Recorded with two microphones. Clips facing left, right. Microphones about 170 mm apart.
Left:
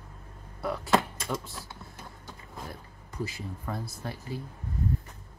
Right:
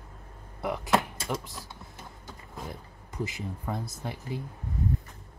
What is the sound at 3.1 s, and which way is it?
Speech, 20° right (ahead or behind).